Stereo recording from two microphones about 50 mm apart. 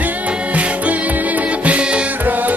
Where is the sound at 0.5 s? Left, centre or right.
Right.